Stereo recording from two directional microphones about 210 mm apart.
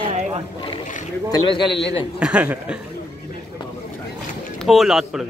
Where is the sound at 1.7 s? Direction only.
55° left (ahead or behind).